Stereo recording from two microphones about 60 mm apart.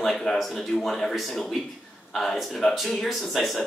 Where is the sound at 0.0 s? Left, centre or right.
Centre.